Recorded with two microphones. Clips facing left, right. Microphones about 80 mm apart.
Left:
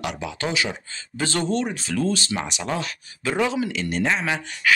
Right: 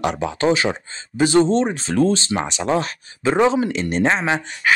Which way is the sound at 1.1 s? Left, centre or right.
Centre.